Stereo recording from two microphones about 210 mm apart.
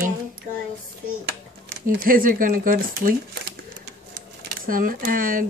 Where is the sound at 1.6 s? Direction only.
45° right (ahead or behind).